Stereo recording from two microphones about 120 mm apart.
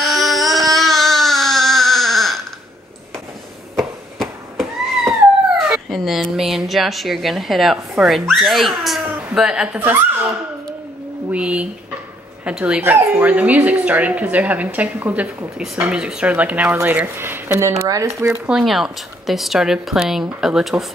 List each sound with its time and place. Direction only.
0.0 s baby cry: centre (ahead or behind)
3.7 s cat: centre (ahead or behind)
5.7 s speech: centre (ahead or behind)
11.3 s speech: 10° right (ahead or behind)
15.5 s speech: 5° right (ahead or behind); by 18.3 s 25° right (ahead or behind)
18.6 s speech: centre (ahead or behind)